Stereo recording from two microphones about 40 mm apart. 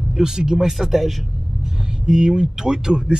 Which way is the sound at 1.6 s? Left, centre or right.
Centre.